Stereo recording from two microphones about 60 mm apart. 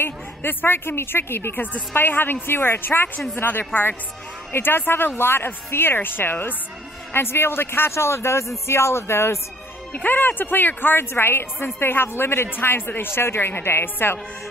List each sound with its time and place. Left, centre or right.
0.0 s speech: left
9.9 s speech: left